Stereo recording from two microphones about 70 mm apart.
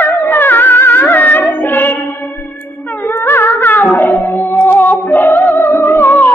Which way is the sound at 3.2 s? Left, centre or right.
Left.